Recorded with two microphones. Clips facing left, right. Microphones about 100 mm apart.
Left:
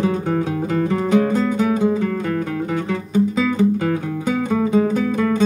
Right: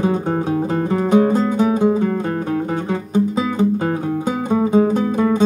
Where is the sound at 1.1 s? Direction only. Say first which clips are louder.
Right 3 dB; 30° right (ahead or behind).